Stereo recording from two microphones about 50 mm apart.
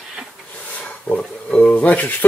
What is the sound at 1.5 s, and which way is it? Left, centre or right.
Speech, left.